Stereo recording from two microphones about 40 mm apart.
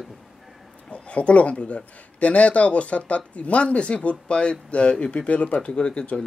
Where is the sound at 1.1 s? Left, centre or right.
Left.